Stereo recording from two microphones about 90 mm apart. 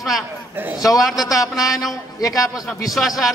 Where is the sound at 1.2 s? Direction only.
40° left (ahead or behind).